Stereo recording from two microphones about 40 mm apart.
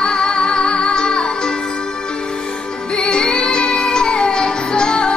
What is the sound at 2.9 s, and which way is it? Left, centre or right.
Music, left.